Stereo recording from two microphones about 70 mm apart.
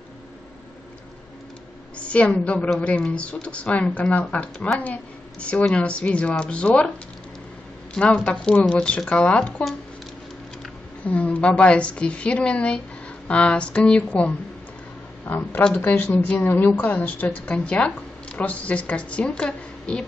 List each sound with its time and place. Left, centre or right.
2.0 s a woman's voice: centre
7.9 s speech: centre
11.1 s a woman's voice: centre